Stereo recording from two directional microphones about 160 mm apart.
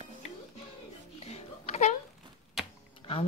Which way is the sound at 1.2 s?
45° left (ahead or behind).